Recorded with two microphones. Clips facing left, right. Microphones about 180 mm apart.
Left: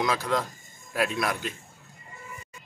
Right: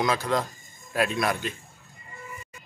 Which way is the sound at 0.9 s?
5° left (ahead or behind).